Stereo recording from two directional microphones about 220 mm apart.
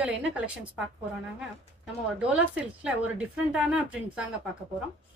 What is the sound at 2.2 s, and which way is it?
A woman's voice, 5° right (ahead or behind).